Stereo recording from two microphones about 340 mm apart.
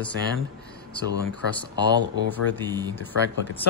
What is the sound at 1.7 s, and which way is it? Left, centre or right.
Speech, centre.